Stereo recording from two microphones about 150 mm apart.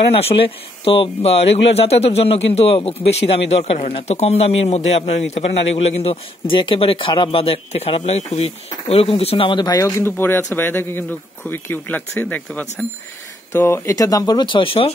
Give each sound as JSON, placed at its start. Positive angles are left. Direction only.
{"t": 0.1, "sound": "speech", "side_deg": 40}